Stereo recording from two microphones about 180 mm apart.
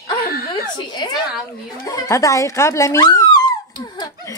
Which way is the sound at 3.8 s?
25° left (ahead or behind).